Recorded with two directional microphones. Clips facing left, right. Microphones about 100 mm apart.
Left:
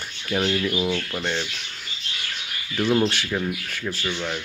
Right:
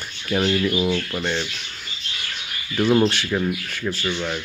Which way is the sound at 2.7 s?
35° right (ahead or behind).